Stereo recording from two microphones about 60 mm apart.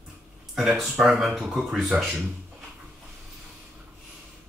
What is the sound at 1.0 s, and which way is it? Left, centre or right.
Speech, centre.